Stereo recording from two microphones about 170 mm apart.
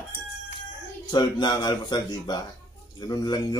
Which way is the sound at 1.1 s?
25° left (ahead or behind).